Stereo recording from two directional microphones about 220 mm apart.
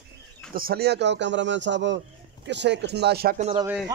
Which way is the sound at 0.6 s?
45° right (ahead or behind).